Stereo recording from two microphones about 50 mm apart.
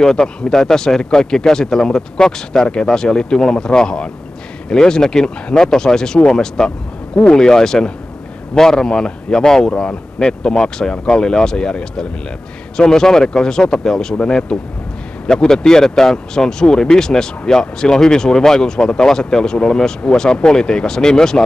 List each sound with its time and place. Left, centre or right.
0.0 s speech: centre